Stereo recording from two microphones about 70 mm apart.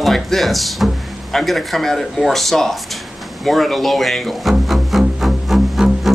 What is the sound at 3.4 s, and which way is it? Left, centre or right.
Music, centre.